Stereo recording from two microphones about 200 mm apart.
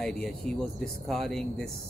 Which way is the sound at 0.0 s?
5° left (ahead or behind).